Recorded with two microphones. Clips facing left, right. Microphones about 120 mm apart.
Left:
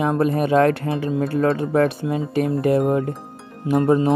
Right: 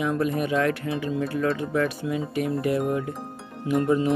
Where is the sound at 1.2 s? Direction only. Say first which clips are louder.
Left 7 dB; 30° left (ahead or behind).